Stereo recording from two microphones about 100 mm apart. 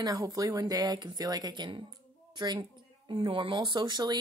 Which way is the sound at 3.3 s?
60° right (ahead or behind).